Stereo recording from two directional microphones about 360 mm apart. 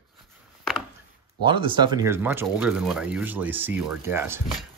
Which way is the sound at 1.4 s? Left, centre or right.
Centre.